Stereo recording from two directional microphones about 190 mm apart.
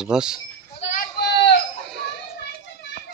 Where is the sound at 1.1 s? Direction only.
65° left (ahead or behind).